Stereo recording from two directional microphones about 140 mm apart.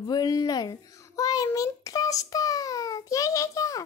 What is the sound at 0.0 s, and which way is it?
A child's voice, 30° left (ahead or behind).